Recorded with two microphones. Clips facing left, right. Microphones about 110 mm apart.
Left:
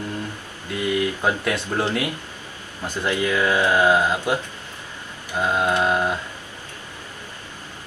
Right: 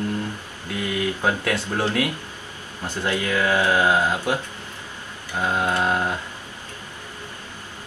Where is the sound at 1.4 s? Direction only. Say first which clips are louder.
Even; 15° left (ahead or behind).